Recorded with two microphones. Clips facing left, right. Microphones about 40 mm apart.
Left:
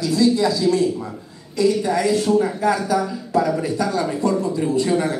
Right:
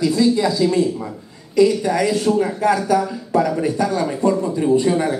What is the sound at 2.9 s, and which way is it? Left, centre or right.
Speech, right.